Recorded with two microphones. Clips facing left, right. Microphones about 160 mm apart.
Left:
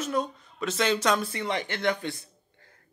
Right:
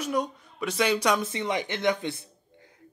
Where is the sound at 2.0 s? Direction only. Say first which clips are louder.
Right 2 dB; 20° right (ahead or behind).